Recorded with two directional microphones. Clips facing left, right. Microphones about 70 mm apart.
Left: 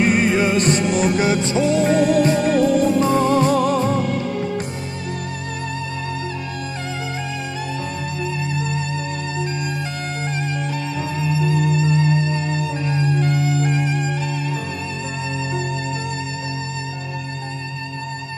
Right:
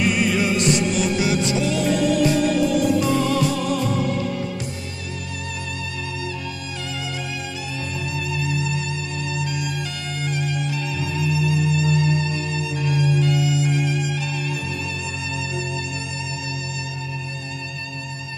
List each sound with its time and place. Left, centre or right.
0.0 s music: left
11.0 s music: left